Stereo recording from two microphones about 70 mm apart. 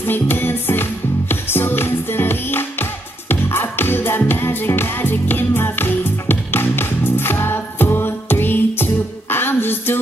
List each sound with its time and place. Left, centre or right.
0.0 s music: left